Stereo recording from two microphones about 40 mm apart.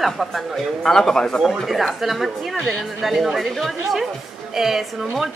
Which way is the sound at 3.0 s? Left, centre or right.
Centre.